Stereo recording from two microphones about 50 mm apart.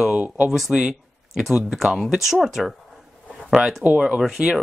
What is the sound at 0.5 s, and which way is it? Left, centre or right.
Speech, centre.